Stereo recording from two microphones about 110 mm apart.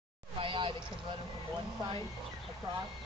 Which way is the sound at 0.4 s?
50° right (ahead or behind).